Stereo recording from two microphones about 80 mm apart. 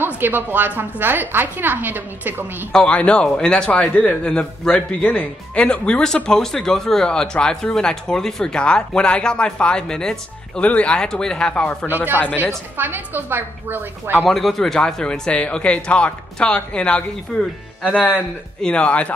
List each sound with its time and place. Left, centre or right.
0.2 s a woman's voice: right
2.7 s speech: centre
12.7 s a woman's voice: right
14.3 s speech: centre